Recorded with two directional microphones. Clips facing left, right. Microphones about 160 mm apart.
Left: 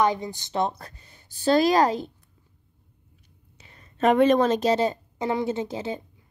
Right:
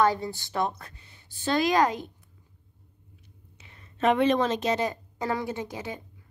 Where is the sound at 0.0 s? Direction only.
20° left (ahead or behind); by 2.0 s 35° left (ahead or behind).